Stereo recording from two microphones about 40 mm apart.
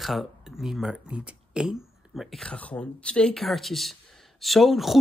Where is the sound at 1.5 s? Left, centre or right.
Centre.